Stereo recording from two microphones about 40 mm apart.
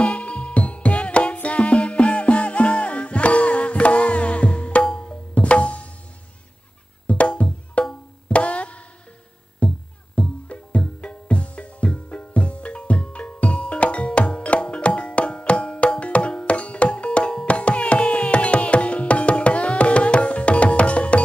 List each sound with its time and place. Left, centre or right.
0.0 s music: left
7.1 s music: left